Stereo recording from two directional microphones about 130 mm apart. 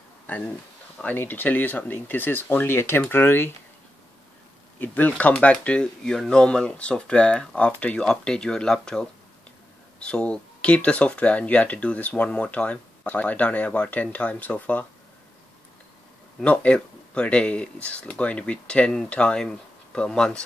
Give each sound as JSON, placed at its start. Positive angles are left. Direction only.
{"t": 1.0, "sound": "speech", "side_deg": 15}
{"t": 4.7, "sound": "speech", "side_deg": 15}
{"t": 16.3, "sound": "speech", "side_deg": 10}